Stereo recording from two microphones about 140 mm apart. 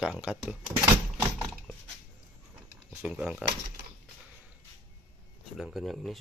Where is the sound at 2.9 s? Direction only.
5° right (ahead or behind).